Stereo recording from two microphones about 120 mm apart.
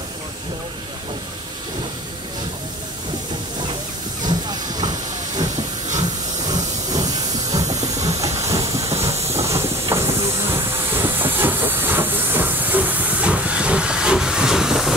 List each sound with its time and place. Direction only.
4.2 s hiss: 35° right (ahead or behind)
6.4 s hiss: 35° right (ahead or behind)
7.8 s steam: 30° right (ahead or behind)
9.5 s hiss: 25° right (ahead or behind); by 15.0 s 5° right (ahead or behind)